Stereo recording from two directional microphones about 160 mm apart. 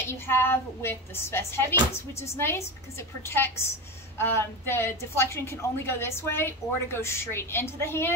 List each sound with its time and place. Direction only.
0.3 s speech: 15° left (ahead or behind)